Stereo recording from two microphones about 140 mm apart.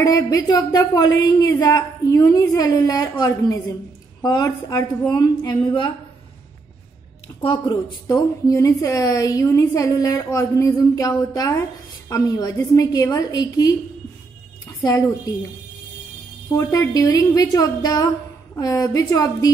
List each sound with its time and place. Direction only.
0.0 s a woman's voice: 25° left (ahead or behind)
7.4 s a woman's voice: 30° left (ahead or behind)
14.8 s a woman's voice: 25° left (ahead or behind)
16.5 s a woman's voice: 20° left (ahead or behind)